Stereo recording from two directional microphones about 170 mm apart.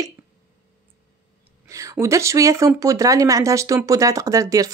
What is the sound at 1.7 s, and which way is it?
Speech, 20° right (ahead or behind).